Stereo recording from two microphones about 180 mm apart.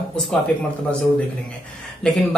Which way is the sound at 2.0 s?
5° left (ahead or behind).